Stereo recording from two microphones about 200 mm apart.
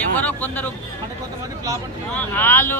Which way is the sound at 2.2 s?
10° left (ahead or behind).